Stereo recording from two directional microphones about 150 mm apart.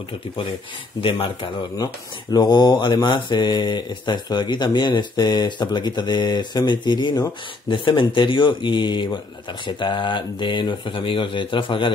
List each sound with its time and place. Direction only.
1.0 s speech: 35° left (ahead or behind)